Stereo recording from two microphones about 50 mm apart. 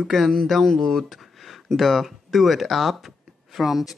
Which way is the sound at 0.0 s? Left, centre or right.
Centre.